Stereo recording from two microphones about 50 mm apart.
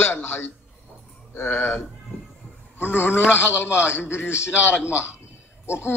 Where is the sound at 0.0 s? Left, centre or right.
Left.